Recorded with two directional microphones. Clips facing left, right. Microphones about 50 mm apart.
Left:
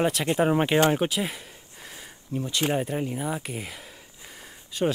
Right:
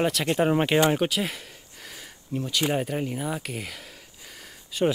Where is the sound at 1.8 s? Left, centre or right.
Centre.